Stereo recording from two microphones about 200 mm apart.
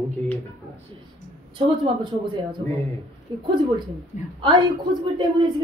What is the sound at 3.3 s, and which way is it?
Speech, 25° right (ahead or behind).